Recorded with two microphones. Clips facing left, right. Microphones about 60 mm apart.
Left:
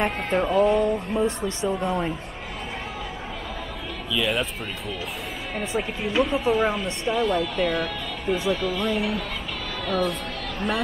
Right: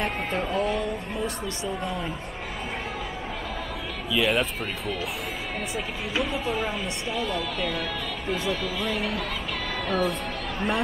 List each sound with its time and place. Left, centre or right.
0.0 s speech: centre
1.1 s speech: left
4.1 s speech: centre
9.8 s speech: centre